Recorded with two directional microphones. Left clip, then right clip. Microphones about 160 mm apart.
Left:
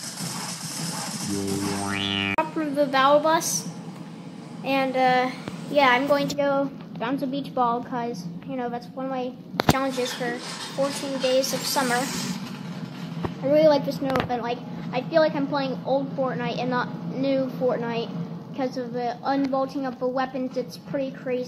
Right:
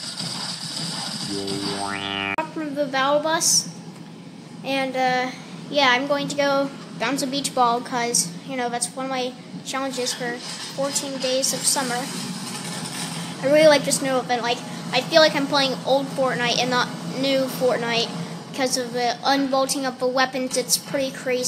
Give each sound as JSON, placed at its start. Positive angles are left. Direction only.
{"t": 1.9, "sound": "speech", "side_deg": 5}
{"t": 4.6, "sound": "a child's voice", "side_deg": 5}
{"t": 6.3, "sound": "a woman's voice", "side_deg": -20}
{"t": 9.8, "sound": "a woman's voice", "side_deg": 0}
{"t": 13.7, "sound": "a woman's voice", "side_deg": -20}